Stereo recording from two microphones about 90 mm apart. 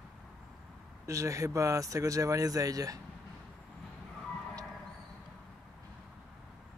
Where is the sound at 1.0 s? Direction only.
35° right (ahead or behind).